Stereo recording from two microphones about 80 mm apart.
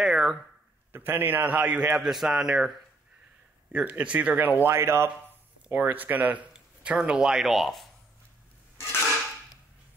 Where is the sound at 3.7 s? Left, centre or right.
Centre; by 5.1 s right.